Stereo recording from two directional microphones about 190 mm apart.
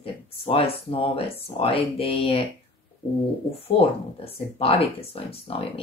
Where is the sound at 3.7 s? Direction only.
30° left (ahead or behind).